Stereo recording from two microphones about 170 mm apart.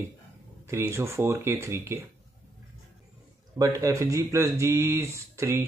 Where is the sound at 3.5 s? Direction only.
20° right (ahead or behind).